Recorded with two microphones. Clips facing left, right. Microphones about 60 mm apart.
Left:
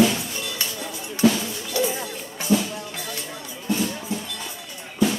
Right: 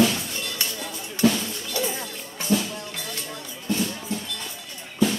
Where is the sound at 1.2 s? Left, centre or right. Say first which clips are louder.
Left 2 dB; centre.